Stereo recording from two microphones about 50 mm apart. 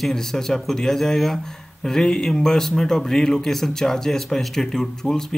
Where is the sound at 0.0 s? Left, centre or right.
Centre.